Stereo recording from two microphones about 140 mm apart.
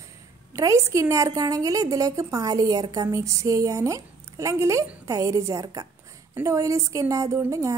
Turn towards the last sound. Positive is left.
turn(degrees=-20)  # may be behind; listen again after turning